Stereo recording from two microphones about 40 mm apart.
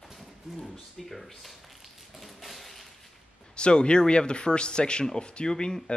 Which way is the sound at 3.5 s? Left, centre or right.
Left.